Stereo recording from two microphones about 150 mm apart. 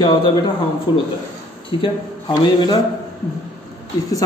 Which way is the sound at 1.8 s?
30° left (ahead or behind).